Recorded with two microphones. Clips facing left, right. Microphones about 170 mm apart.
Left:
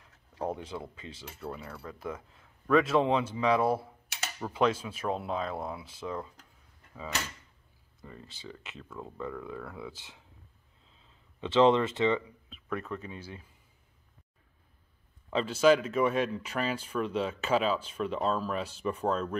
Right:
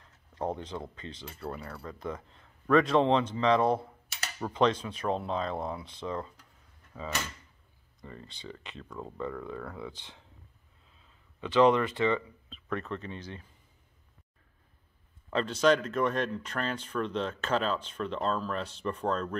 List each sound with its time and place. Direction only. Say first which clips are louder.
0.3 s speech: right 1 dB; 10° left (ahead or behind)
8.0 s speech: right 1 dB; 5° left (ahead or behind)
11.4 s speech: even; 25° left (ahead or behind)
12.4 s speech: right 1 dB; 5° left (ahead or behind)
15.2 s speech: left 2 dB; 5° left (ahead or behind)